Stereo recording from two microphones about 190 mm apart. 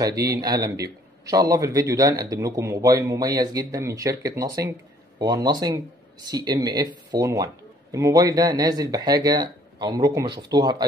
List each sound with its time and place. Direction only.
0.2 s speech: 20° right (ahead or behind)